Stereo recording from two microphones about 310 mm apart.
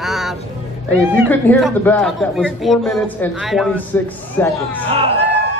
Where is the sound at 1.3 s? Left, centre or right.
Centre.